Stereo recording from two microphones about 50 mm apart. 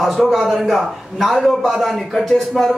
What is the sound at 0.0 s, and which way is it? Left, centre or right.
A man's voice, centre.